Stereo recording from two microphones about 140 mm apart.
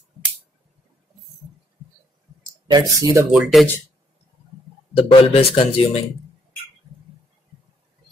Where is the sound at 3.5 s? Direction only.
Centre (ahead or behind).